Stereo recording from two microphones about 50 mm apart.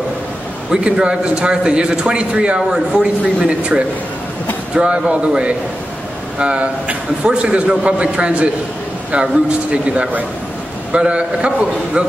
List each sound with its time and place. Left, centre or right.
0.7 s a man's voice: centre